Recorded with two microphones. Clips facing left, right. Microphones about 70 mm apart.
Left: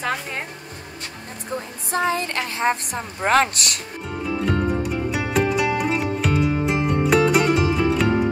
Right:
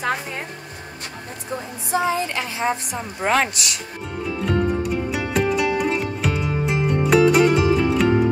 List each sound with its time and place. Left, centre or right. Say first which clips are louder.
1.9 s a woman's voice: right 1 dB; left
4.4 s music: right 1 dB; centre